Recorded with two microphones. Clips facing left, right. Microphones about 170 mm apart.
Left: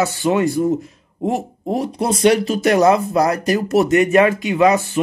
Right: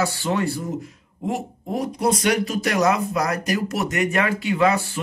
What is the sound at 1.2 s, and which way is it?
Speech, 30° left (ahead or behind).